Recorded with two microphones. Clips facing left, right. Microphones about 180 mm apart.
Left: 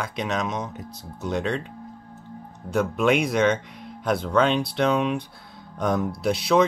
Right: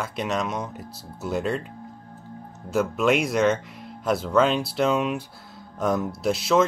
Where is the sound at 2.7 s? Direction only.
5° right (ahead or behind).